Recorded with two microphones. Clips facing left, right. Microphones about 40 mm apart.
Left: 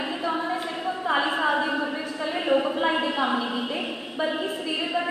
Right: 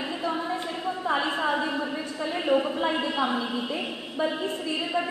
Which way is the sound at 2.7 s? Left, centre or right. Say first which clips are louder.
Left 2 dB; centre.